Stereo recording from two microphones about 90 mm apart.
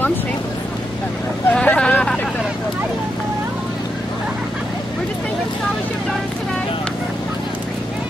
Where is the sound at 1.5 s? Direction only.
10° left (ahead or behind).